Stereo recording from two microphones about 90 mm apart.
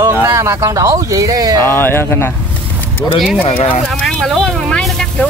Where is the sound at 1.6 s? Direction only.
25° left (ahead or behind).